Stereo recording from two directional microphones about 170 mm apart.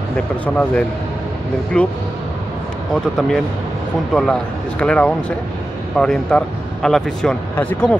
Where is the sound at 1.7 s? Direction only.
5° left (ahead or behind).